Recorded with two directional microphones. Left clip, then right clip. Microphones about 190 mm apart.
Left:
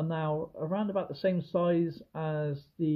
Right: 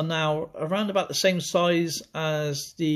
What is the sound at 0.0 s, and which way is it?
Speech, 15° right (ahead or behind).